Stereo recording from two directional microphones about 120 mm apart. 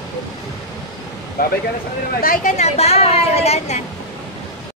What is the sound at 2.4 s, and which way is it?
Speech, 70° left (ahead or behind).